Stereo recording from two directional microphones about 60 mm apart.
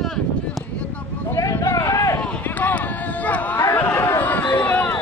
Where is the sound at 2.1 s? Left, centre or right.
Centre.